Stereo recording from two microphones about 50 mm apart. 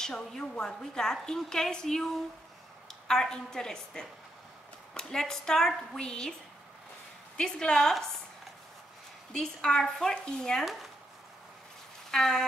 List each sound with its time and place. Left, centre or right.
0.0 s a woman's voice: centre
7.3 s a woman's voice: centre
9.3 s a woman's voice: centre
10.6 s speech: centre
12.1 s a sound: centre